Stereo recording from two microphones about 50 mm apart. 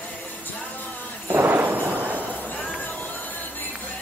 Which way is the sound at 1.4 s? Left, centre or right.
Right.